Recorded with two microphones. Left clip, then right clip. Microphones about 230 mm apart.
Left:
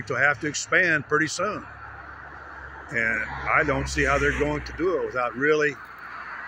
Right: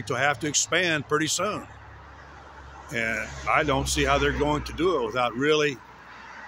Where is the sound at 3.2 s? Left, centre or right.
Left.